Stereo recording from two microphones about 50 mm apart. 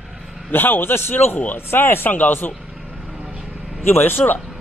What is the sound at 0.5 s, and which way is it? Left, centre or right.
Speech, left.